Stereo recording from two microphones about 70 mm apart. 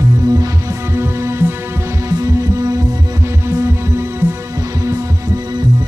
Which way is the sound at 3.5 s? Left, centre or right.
Right.